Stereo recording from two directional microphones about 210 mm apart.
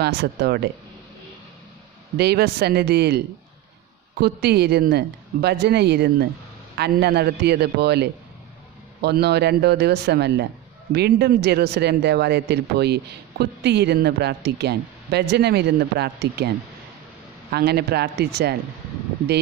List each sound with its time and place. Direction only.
0.0 s a man's voice: 50° right (ahead or behind)
2.1 s a man's voice: 50° right (ahead or behind)
4.2 s a man's voice: 50° right (ahead or behind)